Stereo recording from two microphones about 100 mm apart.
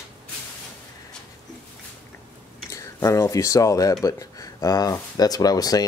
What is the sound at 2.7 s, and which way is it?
Speech, 30° left (ahead or behind).